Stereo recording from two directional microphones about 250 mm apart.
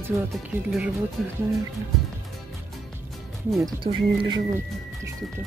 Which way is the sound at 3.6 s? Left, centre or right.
Centre.